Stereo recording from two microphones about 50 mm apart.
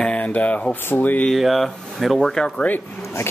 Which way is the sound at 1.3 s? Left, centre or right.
Centre.